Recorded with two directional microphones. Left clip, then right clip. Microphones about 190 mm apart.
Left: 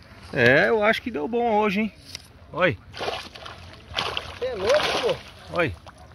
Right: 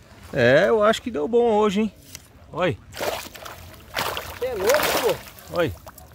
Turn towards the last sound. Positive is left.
turn(degrees=0)  # may be behind; listen again after turning